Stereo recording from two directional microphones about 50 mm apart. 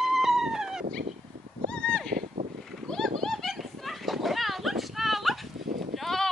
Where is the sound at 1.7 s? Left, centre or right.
Centre.